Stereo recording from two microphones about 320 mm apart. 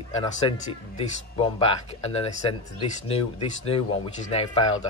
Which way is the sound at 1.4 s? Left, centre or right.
Centre.